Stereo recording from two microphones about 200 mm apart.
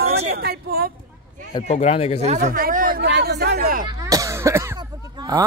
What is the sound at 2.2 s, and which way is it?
Speech, 35° right (ahead or behind).